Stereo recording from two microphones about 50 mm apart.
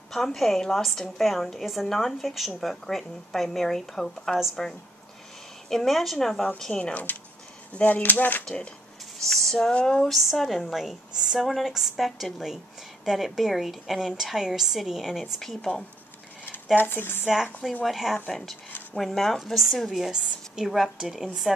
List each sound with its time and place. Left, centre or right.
0.1 s a woman's voice: centre
6.8 s speech: left
9.2 s a woman's voice: centre
9.6 s a woman's voice: centre
16.7 s speech: left
17.8 s a woman's voice: centre
20.1 s a woman's voice: centre
20.6 s a woman's voice: centre